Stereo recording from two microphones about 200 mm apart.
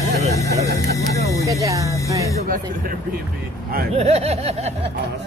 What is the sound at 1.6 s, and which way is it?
Speech, 15° right (ahead or behind).